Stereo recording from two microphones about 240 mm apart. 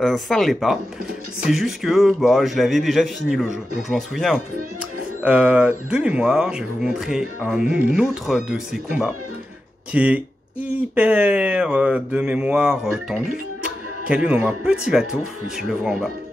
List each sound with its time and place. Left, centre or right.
0.0 s speech: centre